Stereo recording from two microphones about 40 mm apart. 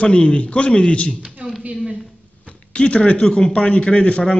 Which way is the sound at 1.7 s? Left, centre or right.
Right.